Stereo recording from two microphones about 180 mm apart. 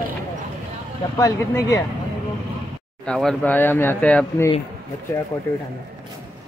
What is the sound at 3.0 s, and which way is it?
Speech, 5° left (ahead or behind).